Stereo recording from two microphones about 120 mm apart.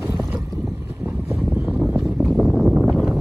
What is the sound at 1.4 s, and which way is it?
Boat, centre (ahead or behind).